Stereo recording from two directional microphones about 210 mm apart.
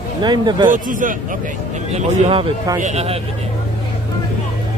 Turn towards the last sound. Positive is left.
turn(degrees=-30)  # may be behind; listen again after turning